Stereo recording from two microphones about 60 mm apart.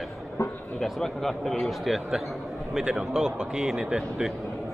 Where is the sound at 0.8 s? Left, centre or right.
Centre.